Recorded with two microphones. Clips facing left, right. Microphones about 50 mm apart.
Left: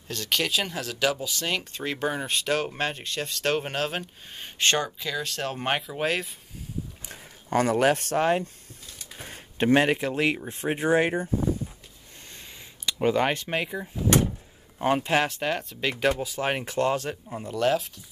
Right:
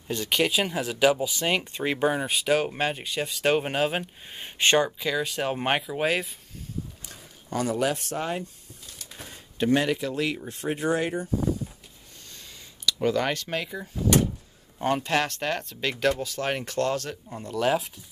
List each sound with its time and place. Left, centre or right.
0.1 s speech: centre
2.0 s speech: centre
7.1 s speech: left
9.7 s speech: left
12.3 s a sound: left
14.8 s speech: centre
17.6 s speech: centre